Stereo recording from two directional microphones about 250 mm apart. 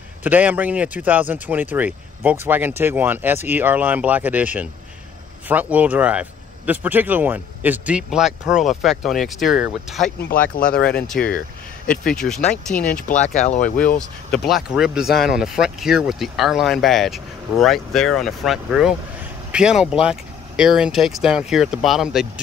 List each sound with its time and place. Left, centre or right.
0.2 s speech: centre
10.7 s speech: left
11.9 s speech: centre
13.4 s speech: left
13.9 s speech: centre